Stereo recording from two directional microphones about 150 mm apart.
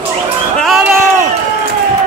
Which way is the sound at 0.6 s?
5° right (ahead or behind).